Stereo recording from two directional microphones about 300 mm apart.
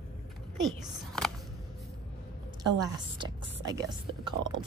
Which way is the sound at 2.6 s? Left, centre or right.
Centre.